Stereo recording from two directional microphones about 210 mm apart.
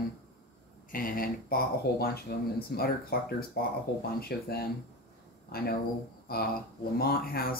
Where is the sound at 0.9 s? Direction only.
40° left (ahead or behind).